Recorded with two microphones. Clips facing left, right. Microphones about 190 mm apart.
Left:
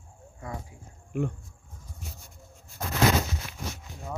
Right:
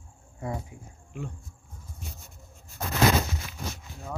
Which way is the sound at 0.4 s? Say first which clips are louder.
Right 5 dB; 25° right (ahead or behind).